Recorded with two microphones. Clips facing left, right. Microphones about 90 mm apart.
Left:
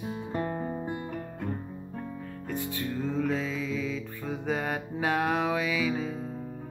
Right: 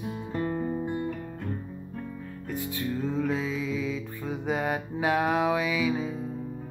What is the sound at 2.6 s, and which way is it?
Music, 5° right (ahead or behind).